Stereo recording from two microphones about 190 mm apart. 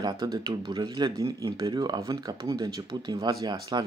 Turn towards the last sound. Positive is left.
turn(degrees=-20)  # may be behind; listen again after turning